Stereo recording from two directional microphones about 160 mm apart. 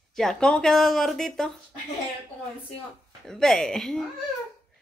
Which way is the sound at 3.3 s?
5° left (ahead or behind).